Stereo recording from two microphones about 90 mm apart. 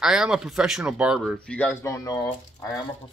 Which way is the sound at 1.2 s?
5° left (ahead or behind).